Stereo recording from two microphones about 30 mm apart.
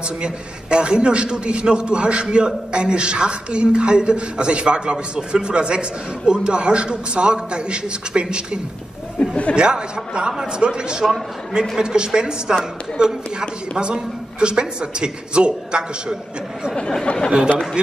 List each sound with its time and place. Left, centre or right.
0.2 s a man's voice: right
9.6 s a man's voice: right
17.0 s speech: left